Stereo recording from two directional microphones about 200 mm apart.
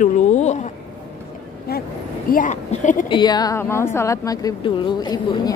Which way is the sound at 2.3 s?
40° left (ahead or behind).